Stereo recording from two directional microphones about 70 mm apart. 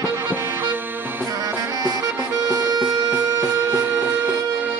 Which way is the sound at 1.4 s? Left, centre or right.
Right.